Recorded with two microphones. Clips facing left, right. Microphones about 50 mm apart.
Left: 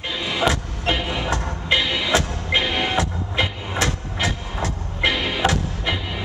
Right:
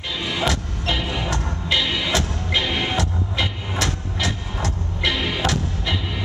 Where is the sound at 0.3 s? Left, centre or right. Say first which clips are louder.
Left 3 dB; centre.